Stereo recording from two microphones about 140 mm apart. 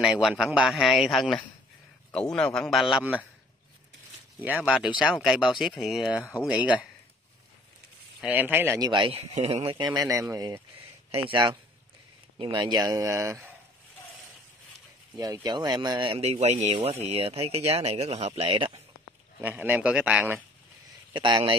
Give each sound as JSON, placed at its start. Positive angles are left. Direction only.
{"t": 0.0, "sound": "a man's voice", "side_deg": -5}
{"t": 4.4, "sound": "a man's voice", "side_deg": -10}
{"t": 8.2, "sound": "speech", "side_deg": -10}
{"t": 8.7, "sound": "speech", "side_deg": -30}
{"t": 11.1, "sound": "speech", "side_deg": -40}
{"t": 15.4, "sound": "speech", "side_deg": -30}
{"t": 19.4, "sound": "speech", "side_deg": -15}
{"t": 21.1, "sound": "speech", "side_deg": -35}